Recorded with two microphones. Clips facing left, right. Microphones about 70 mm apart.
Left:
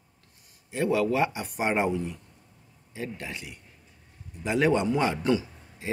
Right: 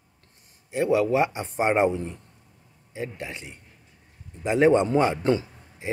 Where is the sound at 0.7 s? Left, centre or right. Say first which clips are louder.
Right 3 dB; right.